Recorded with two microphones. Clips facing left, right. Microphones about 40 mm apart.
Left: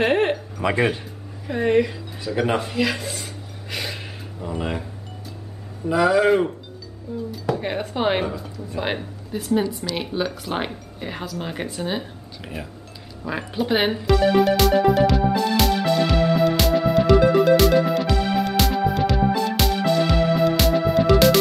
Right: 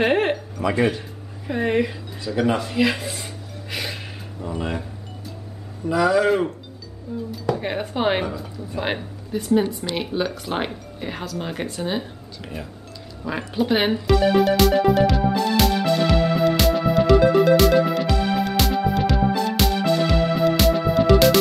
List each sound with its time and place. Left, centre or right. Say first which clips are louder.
0.0 s a sound: even; centre
0.7 s speech: right 1 dB; centre
1.5 s speech: left 2 dB; centre
2.2 s speech: right 1 dB; centre
2.7 s speech: right 2 dB; centre
3.7 s a sound: even; centre
5.9 s speech: left 1 dB; centre
13.2 s music: right 1 dB; centre